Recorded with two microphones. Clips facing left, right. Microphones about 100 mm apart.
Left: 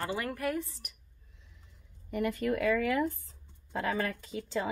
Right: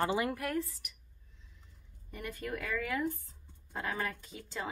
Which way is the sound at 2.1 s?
90° left.